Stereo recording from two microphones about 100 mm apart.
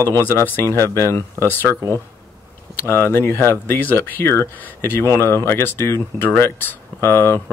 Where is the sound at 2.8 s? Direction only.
25° left (ahead or behind).